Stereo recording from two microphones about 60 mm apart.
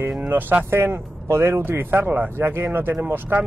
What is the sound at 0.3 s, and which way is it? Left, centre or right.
Speech, right.